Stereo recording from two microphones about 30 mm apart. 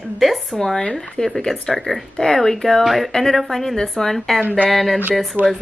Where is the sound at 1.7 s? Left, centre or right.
Centre.